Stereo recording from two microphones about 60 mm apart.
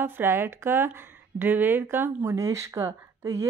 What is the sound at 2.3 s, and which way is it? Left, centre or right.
Speech, right.